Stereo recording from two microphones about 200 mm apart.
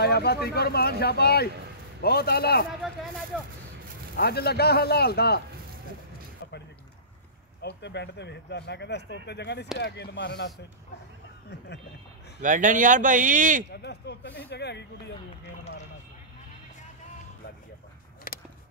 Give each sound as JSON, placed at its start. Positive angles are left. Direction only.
{"t": 0.0, "sound": "speech", "side_deg": 55}
{"t": 2.8, "sound": "speech", "side_deg": 0}
{"t": 4.2, "sound": "speech", "side_deg": 50}
{"t": 7.6, "sound": "speech", "side_deg": 60}
{"t": 12.4, "sound": "speech", "side_deg": -40}
{"t": 13.7, "sound": "speech", "side_deg": 55}
{"t": 18.3, "sound": "a sound", "side_deg": 45}